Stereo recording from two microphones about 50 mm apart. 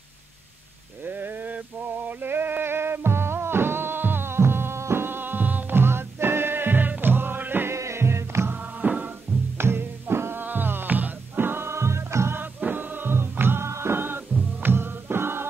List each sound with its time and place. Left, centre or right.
1.0 s a sound: right
2.0 s music: right
5.0 s music: right
7.7 s music: right
8.8 s music: right
9.6 s music: right
12.5 s music: right
13.7 s music: right
13.9 s music: right